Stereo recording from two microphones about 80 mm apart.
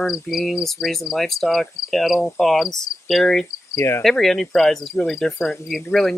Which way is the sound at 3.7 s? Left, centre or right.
Left.